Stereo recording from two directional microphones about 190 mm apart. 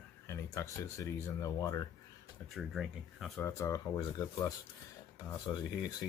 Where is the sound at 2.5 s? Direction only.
Centre (ahead or behind).